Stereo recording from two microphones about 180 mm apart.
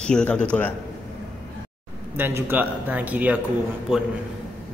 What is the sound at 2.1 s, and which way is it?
A man's voice, 10° right (ahead or behind).